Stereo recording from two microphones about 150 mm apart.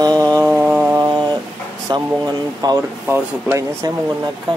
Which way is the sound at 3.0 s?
15° right (ahead or behind).